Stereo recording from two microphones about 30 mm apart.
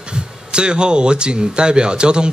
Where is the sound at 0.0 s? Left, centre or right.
Right.